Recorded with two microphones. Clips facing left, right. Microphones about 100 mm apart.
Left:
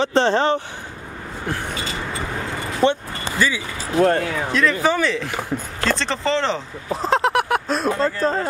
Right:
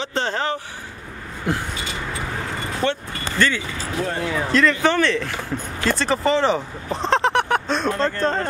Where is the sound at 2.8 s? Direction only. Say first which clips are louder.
Left 5 dB; 20° left (ahead or behind).